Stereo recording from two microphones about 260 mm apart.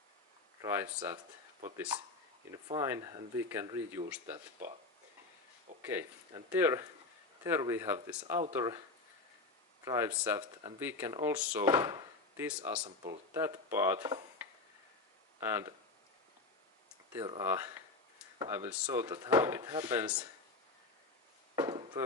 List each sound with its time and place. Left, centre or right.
0.6 s speech: centre
5.9 s speech: centre
9.8 s speech: centre
12.8 s speech: right
13.3 s speech: centre
17.1 s speech: centre
21.5 s a sound: centre